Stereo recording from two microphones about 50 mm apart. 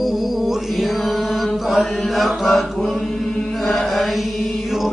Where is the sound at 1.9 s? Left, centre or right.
Centre.